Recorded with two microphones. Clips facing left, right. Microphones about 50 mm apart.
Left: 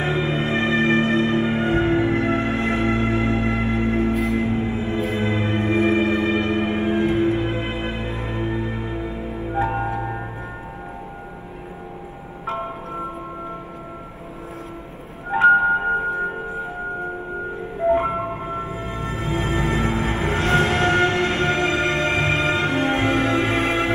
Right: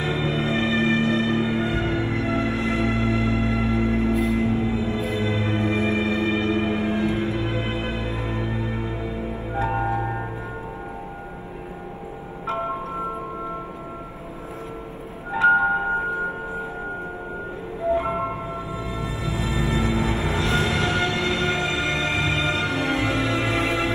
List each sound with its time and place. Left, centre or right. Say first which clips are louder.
0.0 s music: left 2 dB; left
9.6 s music: left 2 dB; centre
15.3 s music: left 4 dB; left
18.0 s music: left 1 dB; left